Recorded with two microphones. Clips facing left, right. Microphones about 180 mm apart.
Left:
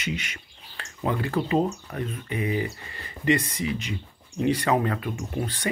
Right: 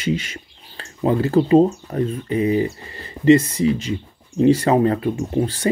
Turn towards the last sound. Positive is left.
turn(degrees=-25)  # may be behind; listen again after turning